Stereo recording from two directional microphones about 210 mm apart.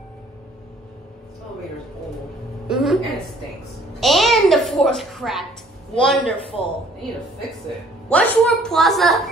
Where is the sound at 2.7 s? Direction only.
Centre (ahead or behind).